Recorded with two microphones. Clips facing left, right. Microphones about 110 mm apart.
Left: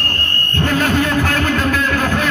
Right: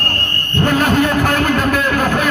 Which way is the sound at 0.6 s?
15° right (ahead or behind).